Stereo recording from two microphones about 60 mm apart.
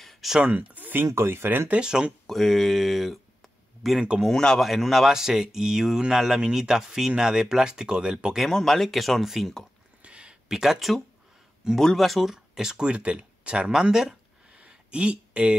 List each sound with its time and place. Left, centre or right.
0.0 s a sound: centre
0.6 s a sound: right
1.0 s speech: right
1.7 s speech: centre
2.2 s speech: centre
4.0 s speech: centre
4.3 s speech: centre
8.5 s speech: centre
10.0 s a sound: centre
10.5 s speech: centre